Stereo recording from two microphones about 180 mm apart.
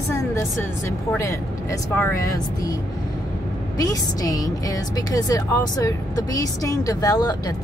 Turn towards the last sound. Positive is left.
turn(degrees=20)  # may be behind; listen again after turning